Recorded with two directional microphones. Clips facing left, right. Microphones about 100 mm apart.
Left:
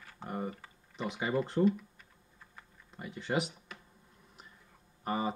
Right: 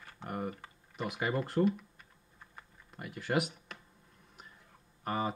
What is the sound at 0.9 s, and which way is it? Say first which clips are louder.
Speech: right 1 dB; 10° right (ahead or behind).